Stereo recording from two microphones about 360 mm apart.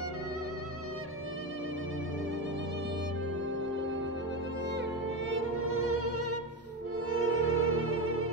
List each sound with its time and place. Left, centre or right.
5.3 s violin: right
7.1 s music: right